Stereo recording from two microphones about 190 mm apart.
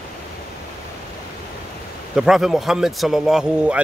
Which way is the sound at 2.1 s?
Centre (ahead or behind).